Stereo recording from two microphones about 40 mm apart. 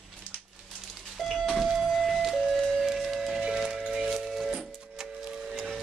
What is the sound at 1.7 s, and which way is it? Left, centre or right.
Music, centre.